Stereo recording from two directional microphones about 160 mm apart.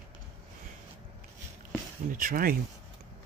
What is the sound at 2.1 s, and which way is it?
Speech, 60° right (ahead or behind).